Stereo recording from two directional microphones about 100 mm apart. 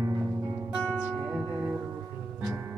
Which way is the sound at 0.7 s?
10° right (ahead or behind).